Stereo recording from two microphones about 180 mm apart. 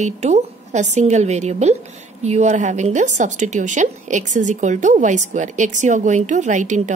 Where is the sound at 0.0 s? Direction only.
40° right (ahead or behind).